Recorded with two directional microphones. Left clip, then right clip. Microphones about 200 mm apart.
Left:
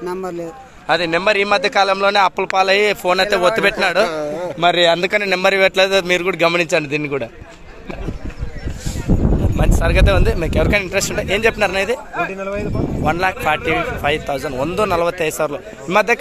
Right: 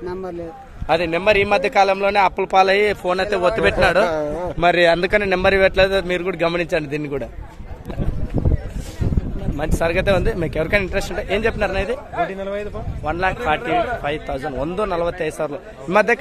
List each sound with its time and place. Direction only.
0.0 s a man's voice: 35° left (ahead or behind)
0.8 s a man's voice: 5° right (ahead or behind)
4.6 s speech: 15° right (ahead or behind)
5.1 s a man's voice: centre (ahead or behind)
9.6 s a man's voice: 5° right (ahead or behind)
13.0 s a man's voice: 5° left (ahead or behind)
15.9 s speech: 10° right (ahead or behind)